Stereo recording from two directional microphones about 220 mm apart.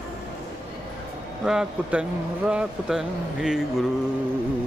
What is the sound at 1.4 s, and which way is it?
Speech, 5° right (ahead or behind).